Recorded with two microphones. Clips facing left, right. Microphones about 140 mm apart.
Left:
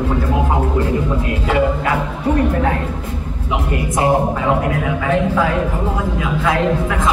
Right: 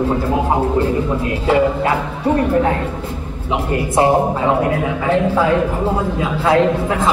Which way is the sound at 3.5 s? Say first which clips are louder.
Right 2 dB; 30° right (ahead or behind).